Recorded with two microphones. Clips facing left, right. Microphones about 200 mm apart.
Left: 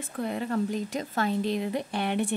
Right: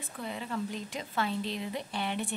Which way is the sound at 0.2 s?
50° left (ahead or behind).